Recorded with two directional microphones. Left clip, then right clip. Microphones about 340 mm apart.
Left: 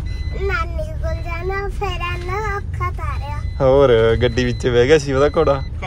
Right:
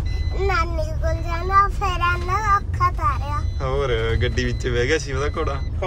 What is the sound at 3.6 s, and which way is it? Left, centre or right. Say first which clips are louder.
Speech: left 12 dB; centre.